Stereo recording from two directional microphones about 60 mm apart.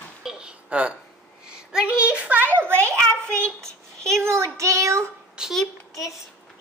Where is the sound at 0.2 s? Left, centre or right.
Centre.